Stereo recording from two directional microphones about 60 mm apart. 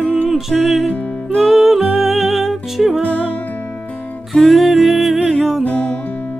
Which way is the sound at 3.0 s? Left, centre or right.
Left.